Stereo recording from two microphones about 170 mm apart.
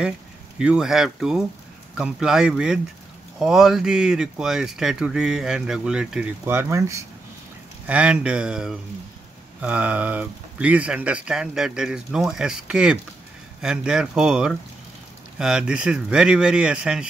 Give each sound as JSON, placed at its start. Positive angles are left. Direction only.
{"t": 0.6, "sound": "speech", "side_deg": -5}